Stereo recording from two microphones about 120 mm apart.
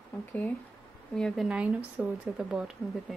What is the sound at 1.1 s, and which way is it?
Speech, centre (ahead or behind).